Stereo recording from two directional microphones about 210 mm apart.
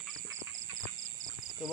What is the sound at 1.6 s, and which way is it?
Speech, centre (ahead or behind).